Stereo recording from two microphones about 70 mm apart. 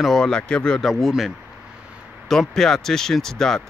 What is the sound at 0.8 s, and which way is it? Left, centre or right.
Speech, centre.